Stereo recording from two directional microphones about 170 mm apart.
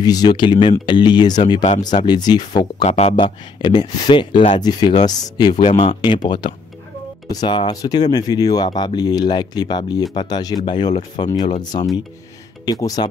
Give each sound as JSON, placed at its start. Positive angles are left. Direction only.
{"t": 0.0, "sound": "speech", "side_deg": 25}
{"t": 2.8, "sound": "speech", "side_deg": 45}
{"t": 3.6, "sound": "speech", "side_deg": 25}
{"t": 5.7, "sound": "speech", "side_deg": 40}
{"t": 6.2, "sound": "speech", "side_deg": 25}